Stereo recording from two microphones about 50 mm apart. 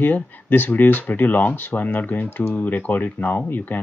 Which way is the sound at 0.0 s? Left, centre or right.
Left.